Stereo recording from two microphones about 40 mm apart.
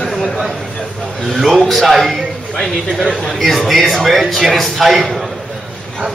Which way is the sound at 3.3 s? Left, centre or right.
Centre.